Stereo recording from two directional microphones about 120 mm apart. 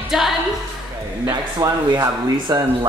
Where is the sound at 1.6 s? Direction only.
30° right (ahead or behind).